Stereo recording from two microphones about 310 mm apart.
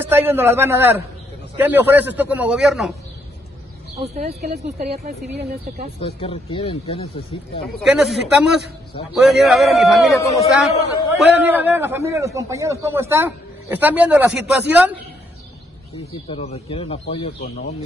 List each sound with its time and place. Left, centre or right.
0.0 s a man's voice: centre
4.0 s speech: right
6.2 s speech: centre
7.8 s a man's voice: centre
16.1 s speech: centre